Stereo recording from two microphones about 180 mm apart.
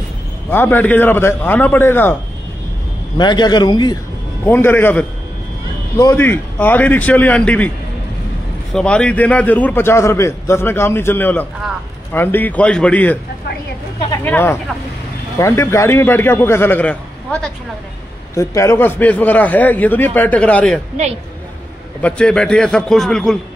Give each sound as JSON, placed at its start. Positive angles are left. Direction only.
{"t": 0.5, "sound": "a man's voice", "side_deg": 10}
{"t": 3.2, "sound": "a man's voice", "side_deg": 25}
{"t": 4.5, "sound": "a man's voice", "side_deg": 10}
{"t": 8.7, "sound": "a man's voice", "side_deg": 5}
{"t": 22.0, "sound": "a man's voice", "side_deg": 5}